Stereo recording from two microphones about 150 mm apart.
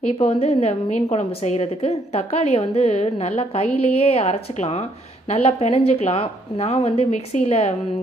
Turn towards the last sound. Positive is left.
turn(degrees=45)  # may be behind; listen again after turning